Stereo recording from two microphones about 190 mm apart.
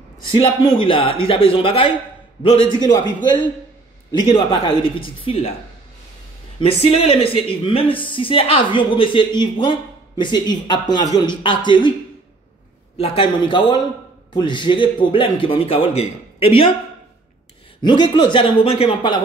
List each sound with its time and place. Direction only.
0.3 s speech: 25° left (ahead or behind)
4.2 s speech: 20° left (ahead or behind)
6.6 s speech: 30° left (ahead or behind)
12.9 s speech: 30° left (ahead or behind)
17.8 s speech: 25° left (ahead or behind)